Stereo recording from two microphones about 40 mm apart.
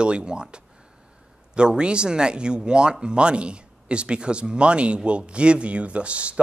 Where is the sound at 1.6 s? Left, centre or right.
Right.